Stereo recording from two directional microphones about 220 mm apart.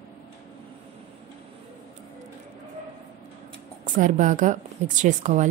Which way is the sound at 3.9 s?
35° right (ahead or behind).